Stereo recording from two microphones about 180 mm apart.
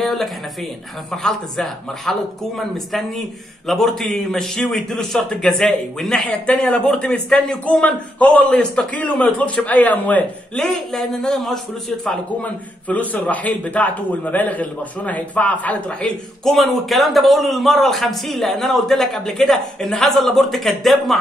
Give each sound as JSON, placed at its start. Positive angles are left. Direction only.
{"t": 0.0, "sound": "a man's voice", "side_deg": 0}